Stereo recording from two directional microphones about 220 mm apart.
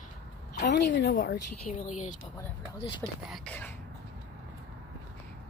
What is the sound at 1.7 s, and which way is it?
Speech, 35° left (ahead or behind).